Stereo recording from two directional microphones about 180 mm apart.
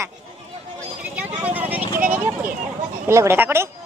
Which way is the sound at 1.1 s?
10° right (ahead or behind).